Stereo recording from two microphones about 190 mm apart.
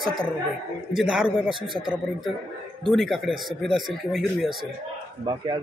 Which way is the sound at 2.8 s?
Centre (ahead or behind).